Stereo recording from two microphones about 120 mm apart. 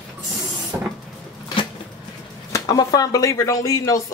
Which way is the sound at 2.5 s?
30° left (ahead or behind).